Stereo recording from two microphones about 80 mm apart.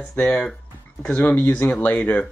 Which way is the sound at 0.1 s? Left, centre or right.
Centre.